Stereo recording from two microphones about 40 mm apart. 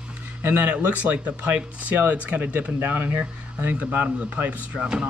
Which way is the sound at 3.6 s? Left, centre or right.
Right.